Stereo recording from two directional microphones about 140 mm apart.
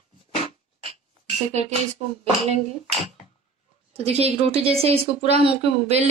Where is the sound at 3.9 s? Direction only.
45° right (ahead or behind).